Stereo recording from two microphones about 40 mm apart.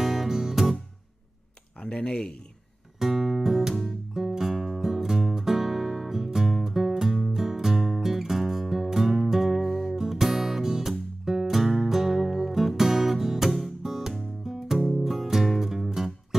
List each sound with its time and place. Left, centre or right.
0.0 s music: centre
1.8 s speech: left
3.0 s music: centre
9.6 s music: centre
9.9 s music: centre